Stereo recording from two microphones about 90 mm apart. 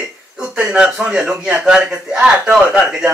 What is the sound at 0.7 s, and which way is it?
A man's voice, 10° right (ahead or behind).